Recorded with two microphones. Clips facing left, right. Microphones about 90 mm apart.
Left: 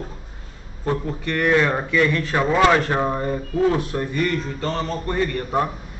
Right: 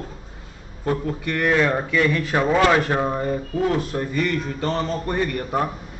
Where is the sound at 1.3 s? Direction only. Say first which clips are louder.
Left 1 dB; centre (ahead or behind).